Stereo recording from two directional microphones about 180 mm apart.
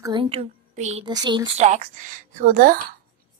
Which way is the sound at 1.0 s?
25° right (ahead or behind).